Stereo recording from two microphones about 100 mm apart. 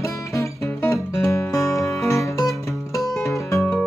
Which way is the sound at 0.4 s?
30° left (ahead or behind).